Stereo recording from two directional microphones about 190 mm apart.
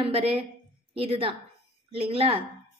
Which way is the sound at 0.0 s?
30° right (ahead or behind).